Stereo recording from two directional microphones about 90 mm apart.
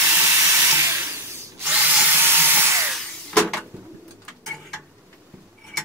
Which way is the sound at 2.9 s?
Centre (ahead or behind).